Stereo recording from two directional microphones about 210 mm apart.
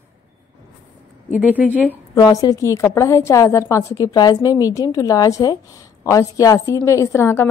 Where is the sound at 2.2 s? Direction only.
15° left (ahead or behind).